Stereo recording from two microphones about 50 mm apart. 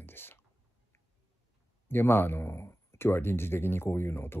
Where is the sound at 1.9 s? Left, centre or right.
Left.